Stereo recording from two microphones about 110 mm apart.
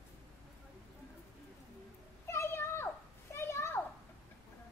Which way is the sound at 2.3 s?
25° left (ahead or behind).